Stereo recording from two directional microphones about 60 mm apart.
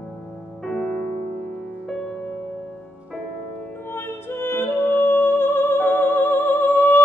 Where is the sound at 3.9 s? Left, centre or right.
Left.